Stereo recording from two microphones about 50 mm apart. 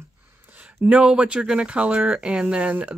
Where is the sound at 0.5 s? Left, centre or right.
Right.